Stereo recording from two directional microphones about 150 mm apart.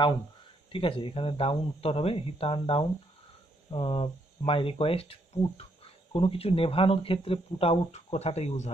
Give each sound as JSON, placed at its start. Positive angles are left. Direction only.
{"t": 0.7, "sound": "speech", "side_deg": 35}